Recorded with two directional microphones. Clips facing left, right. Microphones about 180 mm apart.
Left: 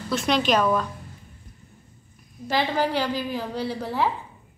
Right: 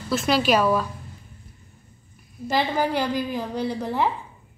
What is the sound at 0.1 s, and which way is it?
Speech, 5° right (ahead or behind).